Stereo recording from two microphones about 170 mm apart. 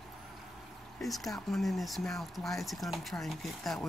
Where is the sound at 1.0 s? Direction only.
Centre (ahead or behind).